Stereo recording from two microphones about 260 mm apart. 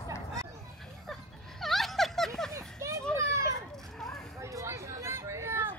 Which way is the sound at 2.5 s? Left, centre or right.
Centre.